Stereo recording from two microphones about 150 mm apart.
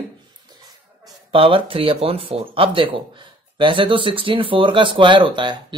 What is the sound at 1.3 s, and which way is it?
Speech, 35° right (ahead or behind).